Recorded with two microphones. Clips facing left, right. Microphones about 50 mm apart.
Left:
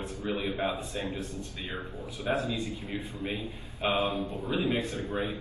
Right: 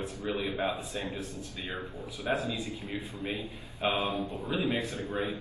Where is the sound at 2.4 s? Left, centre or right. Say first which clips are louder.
Left 2 dB; left.